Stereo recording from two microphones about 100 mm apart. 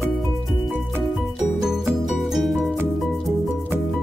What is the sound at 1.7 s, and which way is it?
Music, centre (ahead or behind).